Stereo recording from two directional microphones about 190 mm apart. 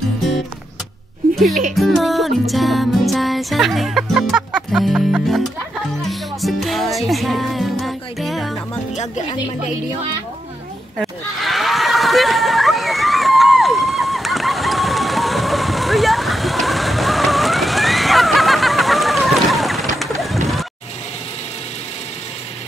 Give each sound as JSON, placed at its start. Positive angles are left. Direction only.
{"t": 1.3, "sound": "music", "side_deg": 0}
{"t": 8.9, "sound": "speech", "side_deg": 35}
{"t": 11.0, "sound": "a sound", "side_deg": 0}